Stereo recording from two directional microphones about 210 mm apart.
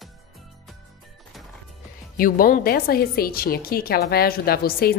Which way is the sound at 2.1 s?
40° left (ahead or behind).